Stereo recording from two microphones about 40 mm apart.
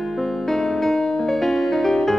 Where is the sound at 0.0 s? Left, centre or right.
Centre.